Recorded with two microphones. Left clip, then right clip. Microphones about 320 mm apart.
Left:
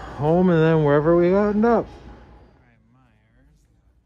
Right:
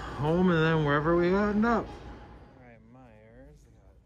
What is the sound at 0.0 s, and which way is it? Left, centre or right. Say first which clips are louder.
Speech: left 8 dB; centre.